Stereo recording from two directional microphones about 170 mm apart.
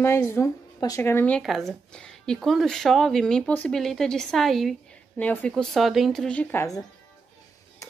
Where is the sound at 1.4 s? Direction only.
Centre (ahead or behind); by 6.8 s 15° left (ahead or behind).